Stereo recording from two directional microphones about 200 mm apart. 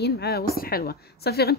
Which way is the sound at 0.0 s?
55° left (ahead or behind).